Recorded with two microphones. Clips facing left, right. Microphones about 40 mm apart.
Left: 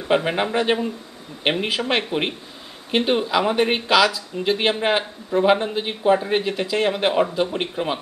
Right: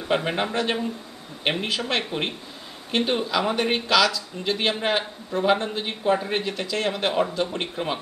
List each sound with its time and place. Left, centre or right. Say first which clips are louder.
0.1 s speech: left 4 dB; centre